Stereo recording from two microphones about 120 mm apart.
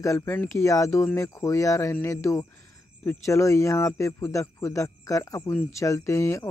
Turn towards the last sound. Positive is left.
turn(degrees=25)  # may be behind; listen again after turning